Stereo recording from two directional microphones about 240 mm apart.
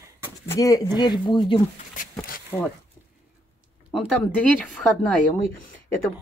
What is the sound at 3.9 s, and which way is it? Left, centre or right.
Speech, centre.